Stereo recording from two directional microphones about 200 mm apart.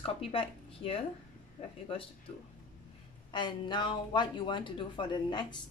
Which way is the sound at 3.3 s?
25° left (ahead or behind).